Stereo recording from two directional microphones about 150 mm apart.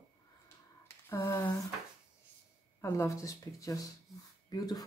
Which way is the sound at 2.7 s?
20° left (ahead or behind).